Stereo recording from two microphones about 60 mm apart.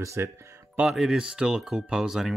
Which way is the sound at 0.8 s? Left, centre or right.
Centre.